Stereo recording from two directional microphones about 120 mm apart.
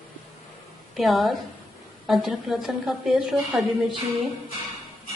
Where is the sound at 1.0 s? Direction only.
Centre (ahead or behind).